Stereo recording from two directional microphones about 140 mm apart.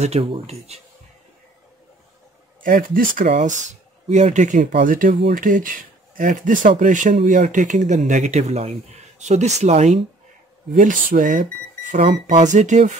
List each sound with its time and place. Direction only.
0.0 s speech: 45° right (ahead or behind)
2.6 s speech: 80° right; by 4.7 s 65° right (ahead or behind)
4.8 s speech: 75° right (ahead or behind); by 10.0 s 50° right (ahead or behind)
10.7 s speech: 70° right (ahead or behind)
12.0 s speech: 45° right (ahead or behind)
12.4 s speech: 60° right (ahead or behind)